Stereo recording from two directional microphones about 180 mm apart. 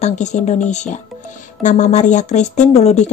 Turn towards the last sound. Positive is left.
turn(degrees=35)  # may be behind; listen again after turning